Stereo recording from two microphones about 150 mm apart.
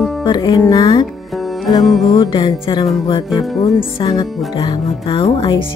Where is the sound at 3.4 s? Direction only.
Centre (ahead or behind).